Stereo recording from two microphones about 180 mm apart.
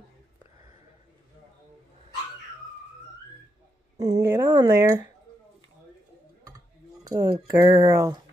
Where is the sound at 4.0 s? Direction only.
20° right (ahead or behind).